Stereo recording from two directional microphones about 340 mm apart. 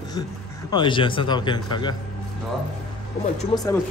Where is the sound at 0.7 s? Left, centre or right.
Centre.